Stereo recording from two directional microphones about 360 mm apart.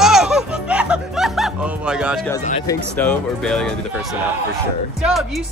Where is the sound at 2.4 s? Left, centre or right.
Centre.